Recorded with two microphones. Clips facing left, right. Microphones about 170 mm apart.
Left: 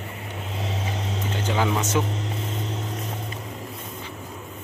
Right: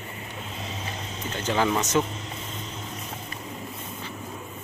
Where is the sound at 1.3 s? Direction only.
10° left (ahead or behind).